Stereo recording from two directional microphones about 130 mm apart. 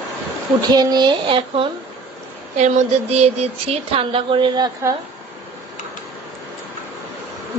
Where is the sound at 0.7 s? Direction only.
30° right (ahead or behind).